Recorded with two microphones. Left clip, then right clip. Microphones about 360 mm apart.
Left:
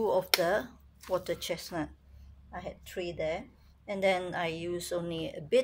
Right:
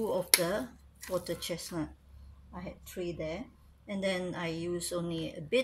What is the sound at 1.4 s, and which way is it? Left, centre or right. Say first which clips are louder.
Speech: left 2 dB; left.